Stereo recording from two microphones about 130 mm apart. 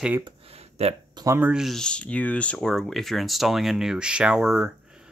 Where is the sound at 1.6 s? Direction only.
5° left (ahead or behind).